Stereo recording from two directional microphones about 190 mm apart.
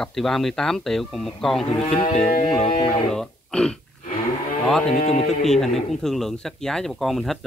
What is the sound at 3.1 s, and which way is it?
Throat clearing, 5° left (ahead or behind).